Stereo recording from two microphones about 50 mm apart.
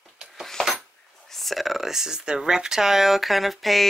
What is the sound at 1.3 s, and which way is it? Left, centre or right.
Speech, centre.